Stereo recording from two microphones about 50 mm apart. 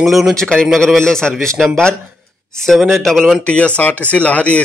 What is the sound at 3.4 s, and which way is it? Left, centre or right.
Speech, left.